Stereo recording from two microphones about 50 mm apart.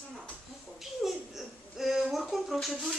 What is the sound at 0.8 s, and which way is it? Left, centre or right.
Speech, centre.